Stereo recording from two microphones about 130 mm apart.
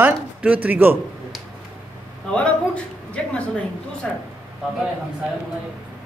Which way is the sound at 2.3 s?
10° left (ahead or behind).